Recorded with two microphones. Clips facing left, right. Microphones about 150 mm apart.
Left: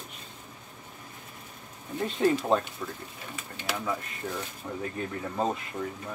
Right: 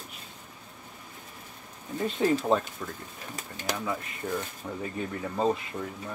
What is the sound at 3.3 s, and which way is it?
Speech, 40° right (ahead or behind).